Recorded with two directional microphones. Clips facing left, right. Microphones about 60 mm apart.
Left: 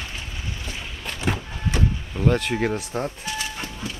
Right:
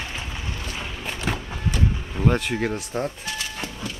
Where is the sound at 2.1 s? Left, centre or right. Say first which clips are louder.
Left 1 dB; centre.